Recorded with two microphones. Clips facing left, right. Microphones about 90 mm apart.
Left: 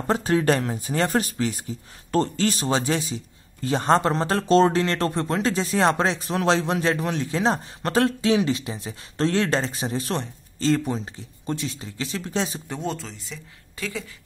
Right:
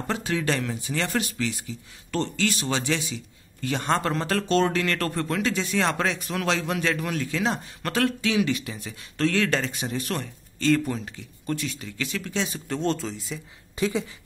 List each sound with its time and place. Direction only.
0.0 s speech: 35° left (ahead or behind)
12.6 s speech: 15° left (ahead or behind)
12.9 s speech: centre (ahead or behind)
13.7 s speech: 20° right (ahead or behind)